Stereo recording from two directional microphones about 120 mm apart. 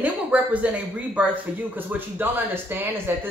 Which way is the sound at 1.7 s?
15° right (ahead or behind).